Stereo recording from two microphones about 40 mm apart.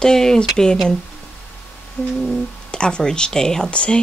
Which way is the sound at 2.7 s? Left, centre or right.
Left.